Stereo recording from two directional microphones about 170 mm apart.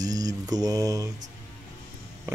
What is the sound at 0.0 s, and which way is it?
Mantra, 20° right (ahead or behind).